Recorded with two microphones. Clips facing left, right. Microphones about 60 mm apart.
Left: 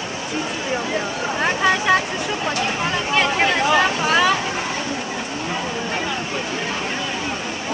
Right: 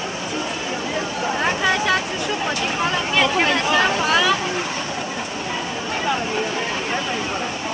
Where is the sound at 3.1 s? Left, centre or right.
Centre.